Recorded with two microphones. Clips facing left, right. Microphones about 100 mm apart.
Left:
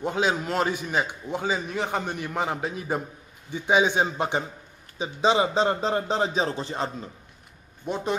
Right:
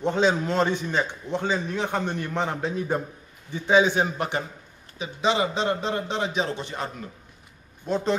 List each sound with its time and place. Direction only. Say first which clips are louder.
0.0 s a man's voice: right 3 dB; 5° left (ahead or behind)
4.9 s a man's voice: left 2 dB; 30° left (ahead or behind)
7.8 s a man's voice: right 3 dB; 15° left (ahead or behind)